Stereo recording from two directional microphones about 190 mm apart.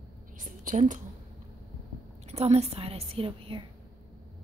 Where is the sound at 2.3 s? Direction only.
35° right (ahead or behind).